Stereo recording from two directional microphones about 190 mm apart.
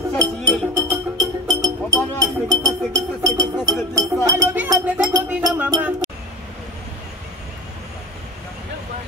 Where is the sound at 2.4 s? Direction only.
15° right (ahead or behind).